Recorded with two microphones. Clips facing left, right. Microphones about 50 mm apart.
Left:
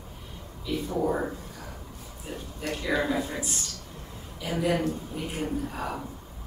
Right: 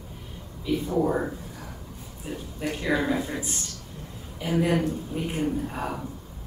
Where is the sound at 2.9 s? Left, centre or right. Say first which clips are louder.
Right 1 dB; centre.